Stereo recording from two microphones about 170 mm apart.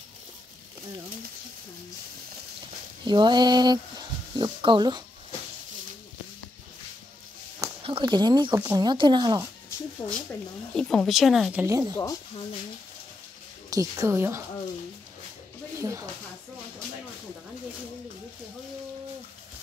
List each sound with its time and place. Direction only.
3.1 s speech: 25° right (ahead or behind)
7.8 s speech: 30° right (ahead or behind)
10.8 s speech: centre (ahead or behind)
11.6 s speech: 20° right (ahead or behind)
11.9 s speech: 15° left (ahead or behind)
13.7 s speech: 20° right (ahead or behind)
15.8 s speech: 20° right (ahead or behind)